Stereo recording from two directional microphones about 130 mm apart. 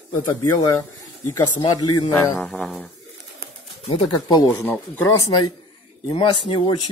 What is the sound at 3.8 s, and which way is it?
Speech, 45° left (ahead or behind).